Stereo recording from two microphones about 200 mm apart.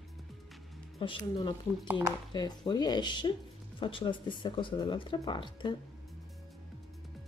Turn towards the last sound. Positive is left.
turn(degrees=25)  # may be behind; listen again after turning